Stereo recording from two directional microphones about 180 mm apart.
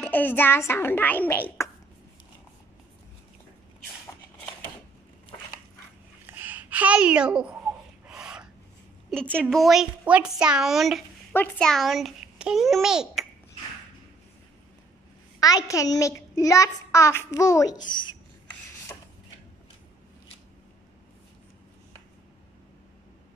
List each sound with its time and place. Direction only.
0.0 s a child's voice: 10° left (ahead or behind)
6.2 s a sound: 10° right (ahead or behind)
8.1 s filing: 5° right (ahead or behind)
9.4 s a woman's voice: centre (ahead or behind)
15.4 s a child's voice: 20° left (ahead or behind)